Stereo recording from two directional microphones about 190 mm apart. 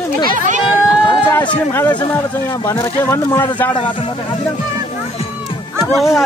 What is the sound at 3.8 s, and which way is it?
Speech, 30° left (ahead or behind).